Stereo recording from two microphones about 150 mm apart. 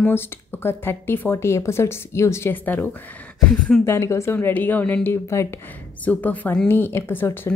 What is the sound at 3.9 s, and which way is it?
A woman's voice, 20° left (ahead or behind).